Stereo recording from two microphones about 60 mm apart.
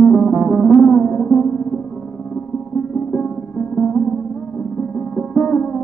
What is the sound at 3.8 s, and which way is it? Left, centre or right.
Music, centre.